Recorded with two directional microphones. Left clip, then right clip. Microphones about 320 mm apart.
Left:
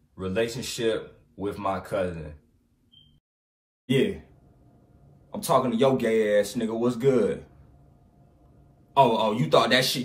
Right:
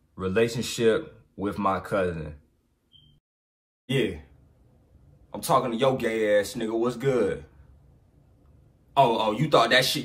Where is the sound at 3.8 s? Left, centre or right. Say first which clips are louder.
Left 2 dB; centre.